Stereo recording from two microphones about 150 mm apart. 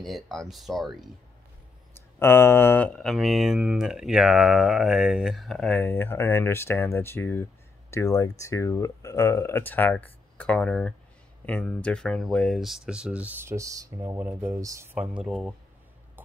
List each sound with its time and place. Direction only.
0.0 s speech: centre (ahead or behind)
2.1 s speech: 15° left (ahead or behind)
5.8 s speech: 15° left (ahead or behind); by 14.9 s 20° right (ahead or behind)
15.0 s speech: 5° right (ahead or behind)